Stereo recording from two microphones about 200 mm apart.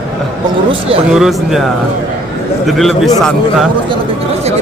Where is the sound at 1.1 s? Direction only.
Centre (ahead or behind).